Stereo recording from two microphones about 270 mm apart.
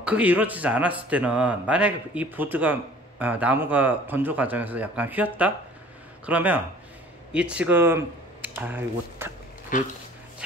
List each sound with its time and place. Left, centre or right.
0.0 s speech: centre
9.7 s speech: left